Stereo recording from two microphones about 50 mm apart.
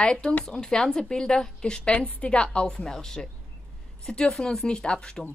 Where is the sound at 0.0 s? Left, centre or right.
Centre.